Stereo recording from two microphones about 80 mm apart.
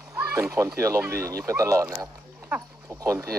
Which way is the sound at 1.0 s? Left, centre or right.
Right.